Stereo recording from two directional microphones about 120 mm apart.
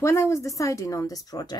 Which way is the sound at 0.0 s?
25° left (ahead or behind).